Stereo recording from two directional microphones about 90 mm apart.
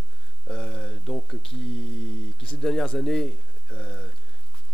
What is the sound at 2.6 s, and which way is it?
Speech, centre (ahead or behind).